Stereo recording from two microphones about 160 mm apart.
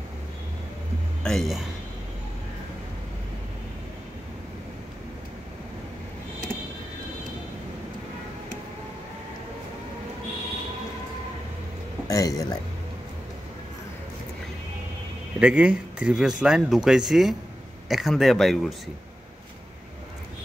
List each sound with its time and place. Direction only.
1.2 s speech: 5° left (ahead or behind)
12.1 s speech: 20° left (ahead or behind)
15.3 s speech: 10° right (ahead or behind)